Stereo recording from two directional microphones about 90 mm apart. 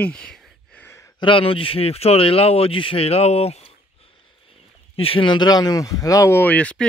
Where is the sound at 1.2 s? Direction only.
75° left (ahead or behind).